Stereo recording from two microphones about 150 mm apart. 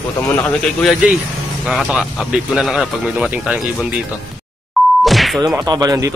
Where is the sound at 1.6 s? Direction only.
Centre (ahead or behind).